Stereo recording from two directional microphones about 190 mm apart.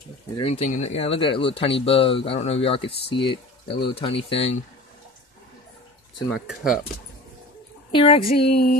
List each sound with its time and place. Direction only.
0.4 s speech: 30° left (ahead or behind)
6.3 s speech: 5° right (ahead or behind)
7.9 s speech: 30° left (ahead or behind)
8.5 s a sound: 55° left (ahead or behind)